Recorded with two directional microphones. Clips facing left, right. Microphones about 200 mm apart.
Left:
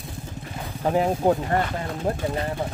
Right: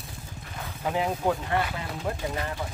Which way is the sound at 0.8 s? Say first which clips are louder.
Left 6 dB; 40° left (ahead or behind).